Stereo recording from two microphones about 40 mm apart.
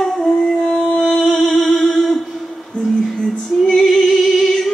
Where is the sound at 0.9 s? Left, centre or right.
Centre.